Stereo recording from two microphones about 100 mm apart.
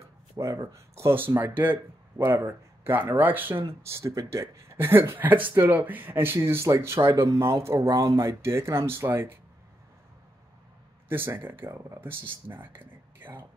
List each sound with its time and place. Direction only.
0.4 s speech: 30° right (ahead or behind)
11.1 s speech: 25° right (ahead or behind)